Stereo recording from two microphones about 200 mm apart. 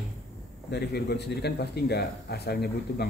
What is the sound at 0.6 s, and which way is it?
A man's voice, 55° left (ahead or behind).